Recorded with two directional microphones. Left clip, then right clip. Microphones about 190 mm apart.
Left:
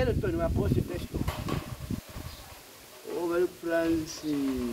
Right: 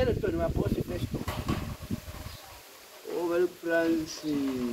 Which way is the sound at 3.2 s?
20° left (ahead or behind).